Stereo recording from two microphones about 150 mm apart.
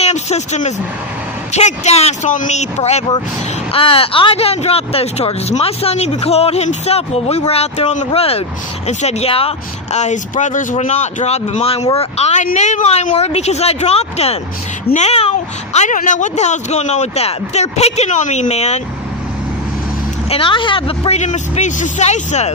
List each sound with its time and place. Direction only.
0.0 s speech: 50° left (ahead or behind)
9.9 s speech: 55° left (ahead or behind)
20.2 s speech: 35° left (ahead or behind)